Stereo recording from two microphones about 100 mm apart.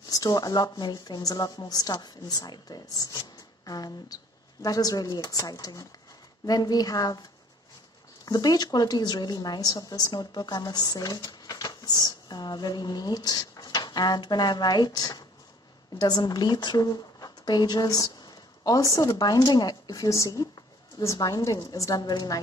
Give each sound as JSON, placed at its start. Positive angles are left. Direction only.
{"t": 0.1, "sound": "speech", "side_deg": 40}
{"t": 8.3, "sound": "a woman's voice", "side_deg": 40}